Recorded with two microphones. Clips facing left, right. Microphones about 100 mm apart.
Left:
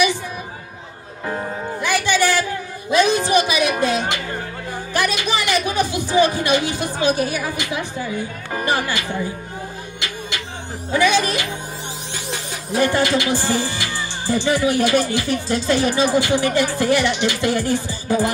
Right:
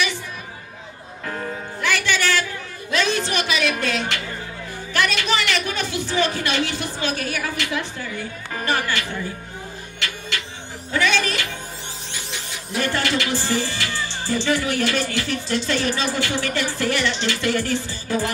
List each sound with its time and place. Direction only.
1.2 s music: 20° left (ahead or behind)
2.9 s speech: 15° left (ahead or behind)
9.9 s music: 15° left (ahead or behind)
10.9 s speech: 15° left (ahead or behind)
12.7 s speech: 15° left (ahead or behind)